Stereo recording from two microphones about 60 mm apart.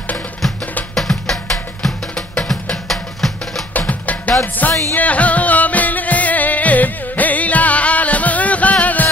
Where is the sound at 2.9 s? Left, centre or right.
Centre.